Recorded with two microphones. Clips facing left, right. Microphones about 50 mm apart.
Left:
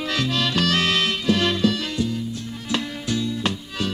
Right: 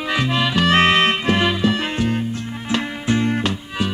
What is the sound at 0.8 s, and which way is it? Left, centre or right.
Music, right.